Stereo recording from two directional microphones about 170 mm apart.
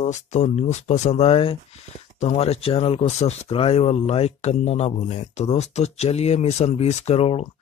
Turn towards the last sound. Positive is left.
turn(degrees=35)  # may be behind; listen again after turning